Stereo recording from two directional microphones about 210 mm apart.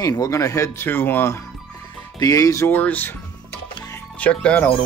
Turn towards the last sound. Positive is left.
turn(degrees=5)  # may be behind; listen again after turning